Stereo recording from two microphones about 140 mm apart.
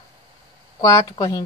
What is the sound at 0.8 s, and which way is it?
Speech, 25° left (ahead or behind).